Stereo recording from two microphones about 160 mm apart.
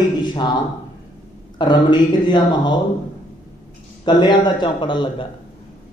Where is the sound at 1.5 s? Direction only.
30° left (ahead or behind).